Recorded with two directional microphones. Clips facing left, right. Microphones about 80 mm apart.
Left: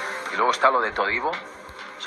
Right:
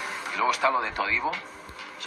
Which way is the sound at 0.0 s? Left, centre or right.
Left.